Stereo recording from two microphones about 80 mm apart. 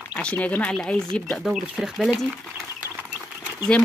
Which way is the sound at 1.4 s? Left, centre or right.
Centre.